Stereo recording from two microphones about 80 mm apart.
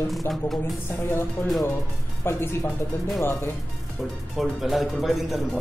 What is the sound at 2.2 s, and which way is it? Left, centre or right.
Speech, left.